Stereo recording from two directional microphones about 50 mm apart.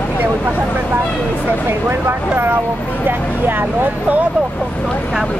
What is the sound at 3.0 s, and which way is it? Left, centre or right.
Vehicle, right.